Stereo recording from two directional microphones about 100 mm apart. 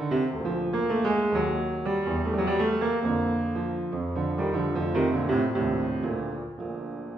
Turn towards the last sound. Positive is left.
turn(degrees=0)  # may be behind; listen again after turning